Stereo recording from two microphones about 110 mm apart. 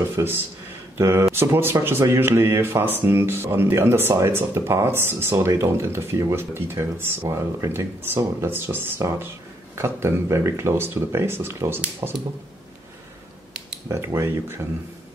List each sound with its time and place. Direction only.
0.1 s speech: 20° right (ahead or behind)
13.8 s speech: 25° right (ahead or behind)